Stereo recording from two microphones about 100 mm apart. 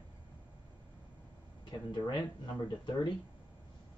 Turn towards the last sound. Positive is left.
turn(degrees=50)  # may be behind; listen again after turning